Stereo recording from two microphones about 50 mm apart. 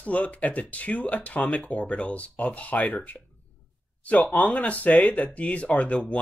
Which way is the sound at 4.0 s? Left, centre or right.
Left.